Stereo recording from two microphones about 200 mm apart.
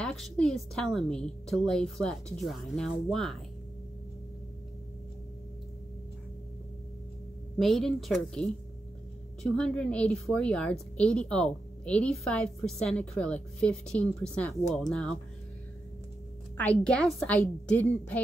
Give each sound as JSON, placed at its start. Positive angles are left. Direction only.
{"t": 0.0, "sound": "a woman's voice", "side_deg": 0}
{"t": 7.5, "sound": "a woman's voice", "side_deg": 0}
{"t": 16.5, "sound": "a woman's voice", "side_deg": 5}